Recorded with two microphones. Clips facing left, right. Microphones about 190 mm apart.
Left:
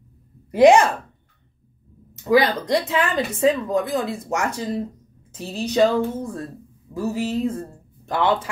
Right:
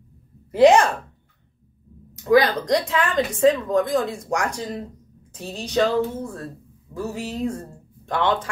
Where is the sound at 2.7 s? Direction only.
5° left (ahead or behind).